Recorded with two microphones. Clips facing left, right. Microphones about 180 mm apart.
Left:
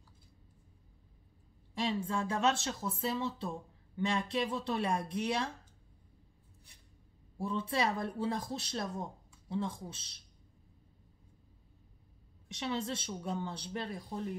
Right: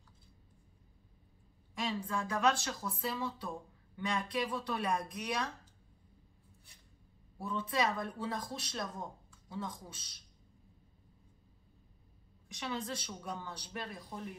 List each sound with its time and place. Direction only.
1.8 s speech: 25° left (ahead or behind)
7.3 s speech: 30° left (ahead or behind)
12.4 s speech: 25° left (ahead or behind)